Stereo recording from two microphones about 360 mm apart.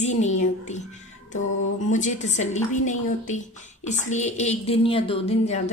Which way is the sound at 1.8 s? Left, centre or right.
Centre.